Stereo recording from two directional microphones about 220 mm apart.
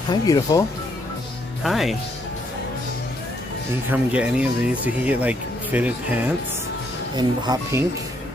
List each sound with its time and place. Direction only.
0.1 s speech: 15° left (ahead or behind)
1.6 s speech: centre (ahead or behind)
3.9 s speech: 5° right (ahead or behind)
7.2 s speech: 20° right (ahead or behind)